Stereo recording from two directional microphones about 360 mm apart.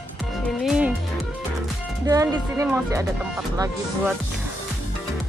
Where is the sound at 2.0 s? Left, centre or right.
Centre.